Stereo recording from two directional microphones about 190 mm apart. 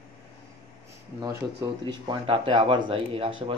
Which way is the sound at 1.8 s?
25° right (ahead or behind).